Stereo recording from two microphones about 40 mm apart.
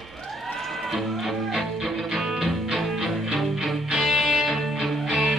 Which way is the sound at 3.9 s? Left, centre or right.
Centre.